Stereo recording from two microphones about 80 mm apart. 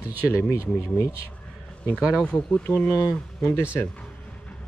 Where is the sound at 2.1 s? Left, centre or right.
Centre.